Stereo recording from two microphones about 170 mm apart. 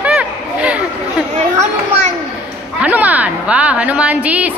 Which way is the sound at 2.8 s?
10° right (ahead or behind).